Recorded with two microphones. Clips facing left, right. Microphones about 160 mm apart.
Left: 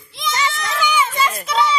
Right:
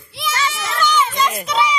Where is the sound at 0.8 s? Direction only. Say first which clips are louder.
Right 1 dB; 10° left (ahead or behind).